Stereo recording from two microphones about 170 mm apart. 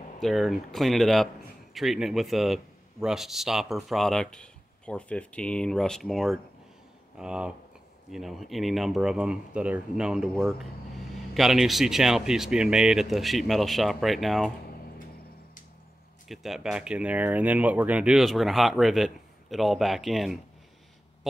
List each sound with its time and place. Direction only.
0.2 s a man's voice: centre (ahead or behind)
16.3 s a man's voice: centre (ahead or behind)